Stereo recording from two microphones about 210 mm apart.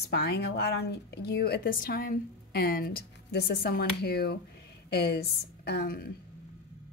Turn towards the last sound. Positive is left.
turn(degrees=50)  # may be behind; listen again after turning